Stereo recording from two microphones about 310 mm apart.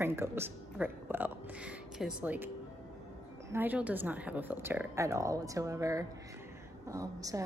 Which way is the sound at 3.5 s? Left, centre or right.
Centre.